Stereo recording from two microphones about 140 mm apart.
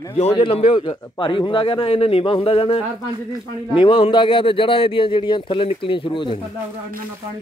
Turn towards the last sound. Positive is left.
turn(degrees=35)  # may be behind; listen again after turning